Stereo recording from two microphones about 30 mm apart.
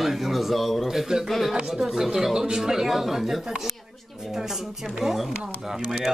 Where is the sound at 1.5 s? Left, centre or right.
Centre.